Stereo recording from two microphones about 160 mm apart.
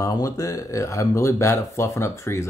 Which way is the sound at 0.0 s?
20° left (ahead or behind).